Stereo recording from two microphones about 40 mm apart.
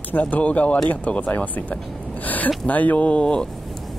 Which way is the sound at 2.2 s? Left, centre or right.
Left.